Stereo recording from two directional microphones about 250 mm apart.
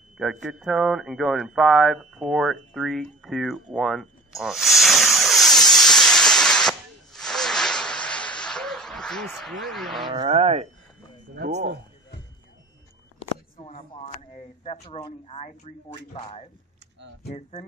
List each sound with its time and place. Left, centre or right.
0.2 s a sound: centre
10.1 s speech: right
11.3 s speech: right
13.6 s speech: left